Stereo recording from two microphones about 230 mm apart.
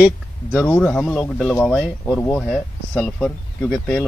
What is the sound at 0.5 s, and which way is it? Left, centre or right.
Speech, centre.